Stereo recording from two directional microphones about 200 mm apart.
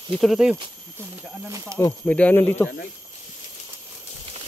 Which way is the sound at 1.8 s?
10° left (ahead or behind).